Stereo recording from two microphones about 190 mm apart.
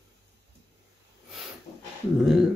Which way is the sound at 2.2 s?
5° right (ahead or behind).